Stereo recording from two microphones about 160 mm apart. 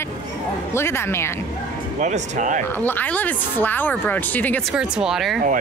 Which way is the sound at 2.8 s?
10° left (ahead or behind).